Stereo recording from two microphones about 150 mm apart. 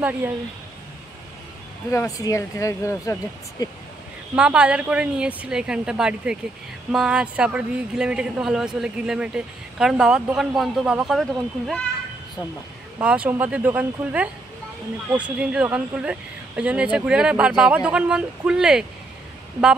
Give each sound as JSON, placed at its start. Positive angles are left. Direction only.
{"t": 1.9, "sound": "speech", "side_deg": 20}
{"t": 4.4, "sound": "a woman's voice", "side_deg": -5}
{"t": 13.0, "sound": "a woman's voice", "side_deg": -10}